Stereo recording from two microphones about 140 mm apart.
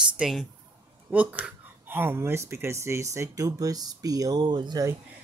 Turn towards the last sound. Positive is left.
turn(degrees=-25)  # may be behind; listen again after turning